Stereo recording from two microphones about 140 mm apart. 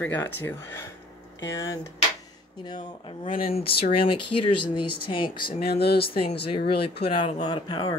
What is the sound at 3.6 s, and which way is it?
Speech, 90° left.